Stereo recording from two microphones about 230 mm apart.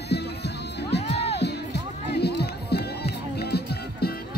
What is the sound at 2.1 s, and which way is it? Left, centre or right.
Music, left.